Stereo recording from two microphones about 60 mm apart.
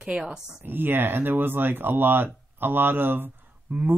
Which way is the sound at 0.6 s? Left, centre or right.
Right.